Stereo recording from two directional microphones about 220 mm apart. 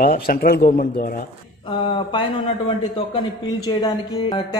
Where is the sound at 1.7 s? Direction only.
20° left (ahead or behind).